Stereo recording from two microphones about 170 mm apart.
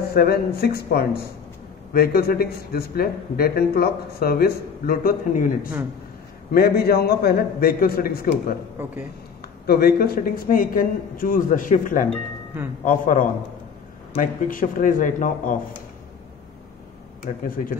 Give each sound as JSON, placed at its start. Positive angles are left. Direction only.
{"t": 0.1, "sound": "a man's voice", "side_deg": 65}
{"t": 9.7, "sound": "a man's voice", "side_deg": 65}
{"t": 17.3, "sound": "a man's voice", "side_deg": 45}